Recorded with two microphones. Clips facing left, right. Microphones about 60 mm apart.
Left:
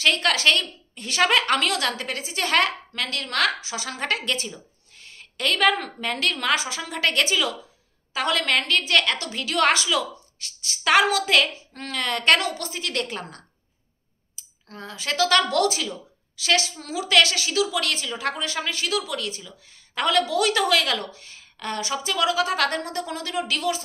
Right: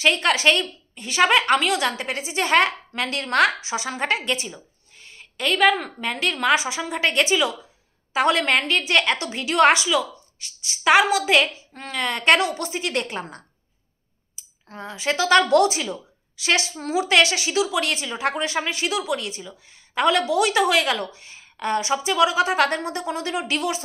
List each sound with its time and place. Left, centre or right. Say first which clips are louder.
0.0 s a woman's voice: right 2 dB; centre
14.4 s clicking: even; centre
14.7 s a woman's voice: right 4 dB; centre